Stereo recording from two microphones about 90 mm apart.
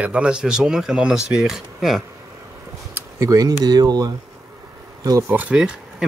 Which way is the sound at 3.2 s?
40° right (ahead or behind).